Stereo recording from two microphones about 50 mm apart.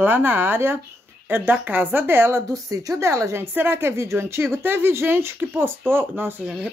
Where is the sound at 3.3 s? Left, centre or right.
Right.